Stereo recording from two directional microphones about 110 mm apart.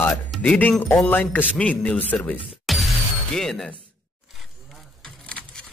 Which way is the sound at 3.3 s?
5° left (ahead or behind).